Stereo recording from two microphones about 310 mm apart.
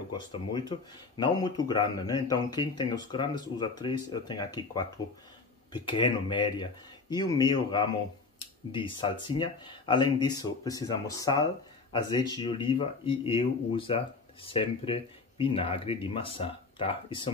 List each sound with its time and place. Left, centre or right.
0.1 s speech: centre